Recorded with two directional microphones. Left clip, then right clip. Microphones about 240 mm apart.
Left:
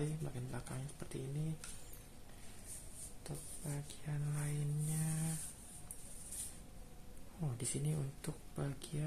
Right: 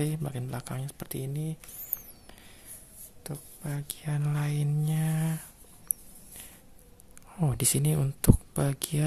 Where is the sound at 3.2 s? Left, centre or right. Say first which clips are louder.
Right 9 dB; right.